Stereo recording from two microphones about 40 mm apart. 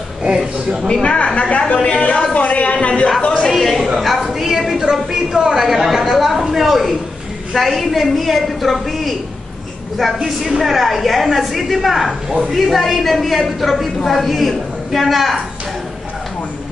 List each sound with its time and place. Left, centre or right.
1.0 s a woman's voice: left
3.4 s a woman's voice: centre